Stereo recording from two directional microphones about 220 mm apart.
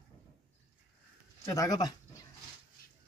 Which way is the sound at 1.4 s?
15° left (ahead or behind).